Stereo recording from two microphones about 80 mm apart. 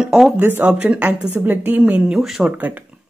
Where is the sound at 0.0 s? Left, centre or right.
Centre.